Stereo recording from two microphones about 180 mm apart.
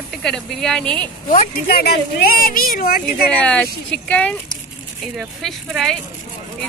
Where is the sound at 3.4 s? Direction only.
5° left (ahead or behind).